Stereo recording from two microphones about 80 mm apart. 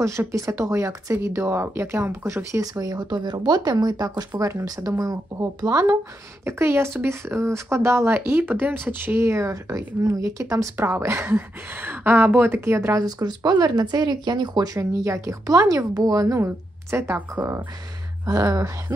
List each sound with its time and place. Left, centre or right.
0.3 s speech: right
2.6 s speech: right
4.4 s speech: right
6.4 s speech: right
9.3 s speech: right
13.0 s speech: right
16.9 s speech: right
18.2 s speech: right